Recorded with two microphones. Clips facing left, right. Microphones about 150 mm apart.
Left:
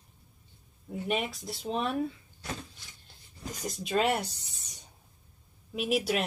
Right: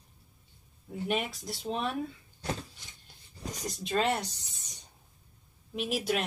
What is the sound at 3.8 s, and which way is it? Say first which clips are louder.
Speech: left 2 dB; 5° left (ahead or behind).